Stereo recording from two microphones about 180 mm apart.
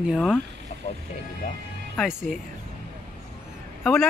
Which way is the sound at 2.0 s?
5° right (ahead or behind).